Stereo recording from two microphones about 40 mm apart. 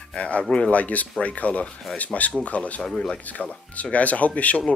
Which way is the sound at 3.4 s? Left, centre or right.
Left.